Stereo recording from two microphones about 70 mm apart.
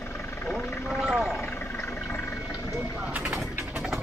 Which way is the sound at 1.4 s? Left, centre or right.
Left.